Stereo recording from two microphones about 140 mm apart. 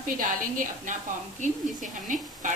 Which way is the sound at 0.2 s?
75° right (ahead or behind).